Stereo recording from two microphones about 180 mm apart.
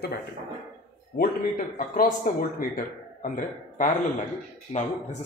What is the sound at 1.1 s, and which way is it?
A man's voice, 50° left (ahead or behind).